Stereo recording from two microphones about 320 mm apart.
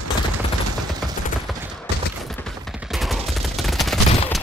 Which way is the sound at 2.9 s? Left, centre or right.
Centre.